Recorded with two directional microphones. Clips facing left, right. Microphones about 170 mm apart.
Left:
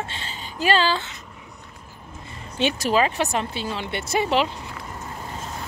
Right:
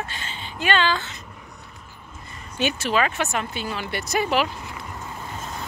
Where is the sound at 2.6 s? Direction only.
35° left (ahead or behind).